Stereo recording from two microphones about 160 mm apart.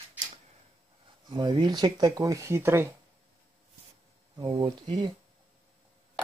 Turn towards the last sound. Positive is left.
turn(degrees=-30)  # may be behind; listen again after turning